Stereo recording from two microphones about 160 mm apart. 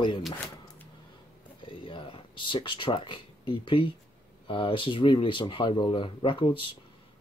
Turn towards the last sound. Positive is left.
turn(degrees=30)  # may be behind; listen again after turning